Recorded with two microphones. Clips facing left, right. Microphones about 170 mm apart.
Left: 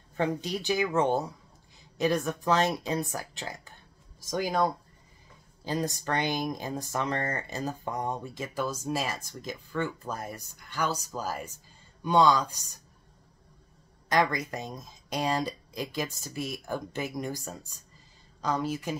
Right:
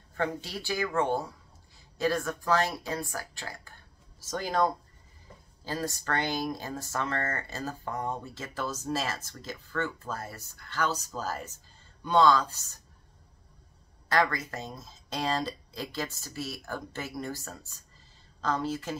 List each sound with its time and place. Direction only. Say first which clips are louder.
0.1 s speech: left 3 dB; 20° left (ahead or behind)
14.0 s speech: left 1 dB; 15° left (ahead or behind)